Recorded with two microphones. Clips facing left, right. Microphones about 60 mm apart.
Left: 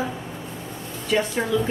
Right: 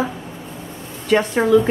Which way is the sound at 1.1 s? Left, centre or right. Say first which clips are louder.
Right 7 dB; right.